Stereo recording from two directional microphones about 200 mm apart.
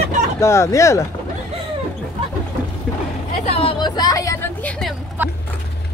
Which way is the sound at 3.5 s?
25° left (ahead or behind).